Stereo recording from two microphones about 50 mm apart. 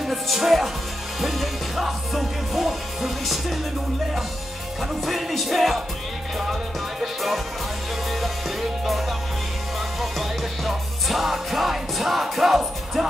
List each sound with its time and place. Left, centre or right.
0.0 s music: centre
5.0 s music: centre
7.0 s music: centre